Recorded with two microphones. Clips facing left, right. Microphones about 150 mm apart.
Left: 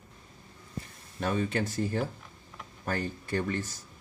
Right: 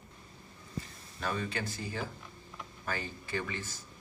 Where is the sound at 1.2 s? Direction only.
50° left (ahead or behind).